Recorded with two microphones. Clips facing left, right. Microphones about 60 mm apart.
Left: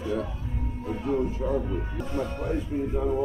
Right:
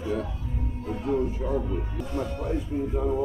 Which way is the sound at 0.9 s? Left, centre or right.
Centre.